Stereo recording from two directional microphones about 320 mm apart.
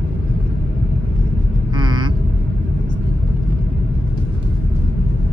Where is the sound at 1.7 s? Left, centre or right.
Centre.